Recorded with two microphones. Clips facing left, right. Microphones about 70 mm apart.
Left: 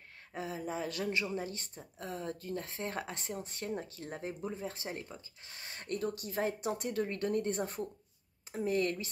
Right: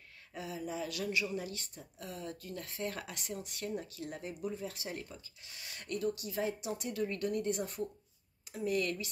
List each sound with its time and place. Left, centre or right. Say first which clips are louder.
0.3 s speech: left 2 dB; left